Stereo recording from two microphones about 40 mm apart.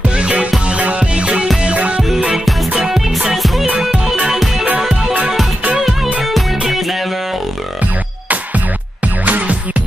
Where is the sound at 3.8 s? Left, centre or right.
Centre.